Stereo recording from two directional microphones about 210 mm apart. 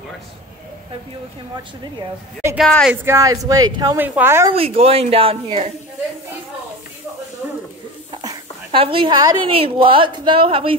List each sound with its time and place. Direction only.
2.4 s a woman's voice: 5° right (ahead or behind)
4.5 s a woman's voice: 30° right (ahead or behind)
8.1 s a woman's voice: 20° right (ahead or behind)